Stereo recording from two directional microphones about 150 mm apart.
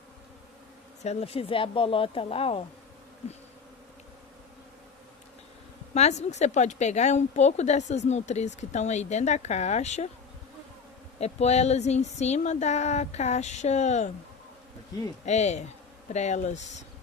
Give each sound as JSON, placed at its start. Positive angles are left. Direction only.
{"t": 1.0, "sound": "speech", "side_deg": 40}
{"t": 5.9, "sound": "speech", "side_deg": 50}
{"t": 11.1, "sound": "speech", "side_deg": 45}
{"t": 15.2, "sound": "speech", "side_deg": 50}